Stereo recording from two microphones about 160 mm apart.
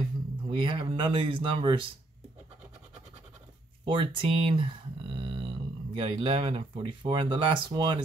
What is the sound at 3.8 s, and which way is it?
Speech, 30° right (ahead or behind).